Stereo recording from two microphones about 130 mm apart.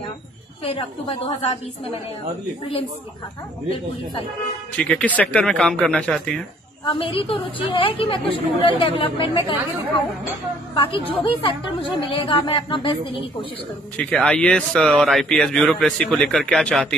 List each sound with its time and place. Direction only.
4.7 s speech: 10° left (ahead or behind)
6.8 s a woman's voice: 40° left (ahead or behind)
10.7 s a woman's voice: 45° left (ahead or behind)
13.9 s a man's voice: 10° left (ahead or behind)